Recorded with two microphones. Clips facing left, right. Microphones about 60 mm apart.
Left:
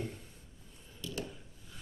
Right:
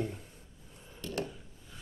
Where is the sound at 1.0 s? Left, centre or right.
Right.